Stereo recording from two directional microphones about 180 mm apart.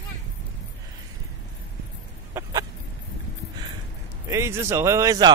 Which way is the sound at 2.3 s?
15° right (ahead or behind).